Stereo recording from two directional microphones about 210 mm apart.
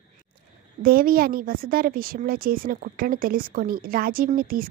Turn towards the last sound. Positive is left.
turn(degrees=-40)  # may be behind; listen again after turning